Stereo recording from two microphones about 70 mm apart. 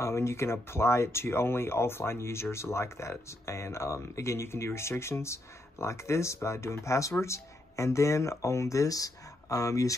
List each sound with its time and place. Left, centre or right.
0.0 s speech: left